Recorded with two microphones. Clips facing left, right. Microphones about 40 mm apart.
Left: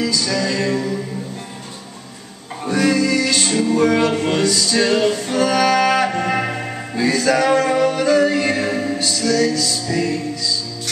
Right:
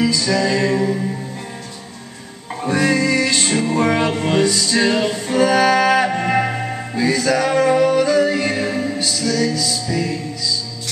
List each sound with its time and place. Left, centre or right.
0.0 s music: centre
2.7 s music: right
4.1 s music: centre